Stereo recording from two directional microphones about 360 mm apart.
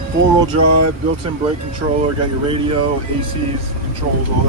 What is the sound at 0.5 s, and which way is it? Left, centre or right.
Speech, right.